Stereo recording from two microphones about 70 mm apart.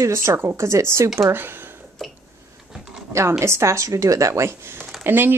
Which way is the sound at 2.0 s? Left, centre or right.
Centre.